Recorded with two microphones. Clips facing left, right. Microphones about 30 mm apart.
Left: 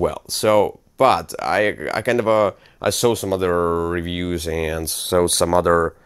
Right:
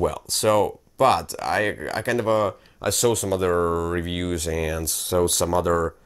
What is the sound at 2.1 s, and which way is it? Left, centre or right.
Speech, left.